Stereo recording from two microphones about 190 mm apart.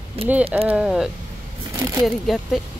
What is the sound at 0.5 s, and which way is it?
Speech, 10° right (ahead or behind).